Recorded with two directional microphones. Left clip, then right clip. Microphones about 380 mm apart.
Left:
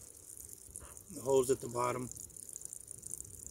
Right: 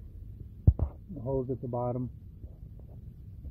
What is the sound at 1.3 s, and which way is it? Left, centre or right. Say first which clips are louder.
Speech: left 2 dB; left.